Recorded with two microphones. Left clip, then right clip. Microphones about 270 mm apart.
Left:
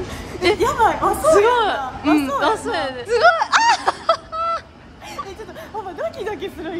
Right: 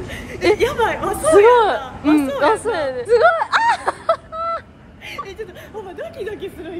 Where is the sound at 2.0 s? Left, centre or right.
Centre.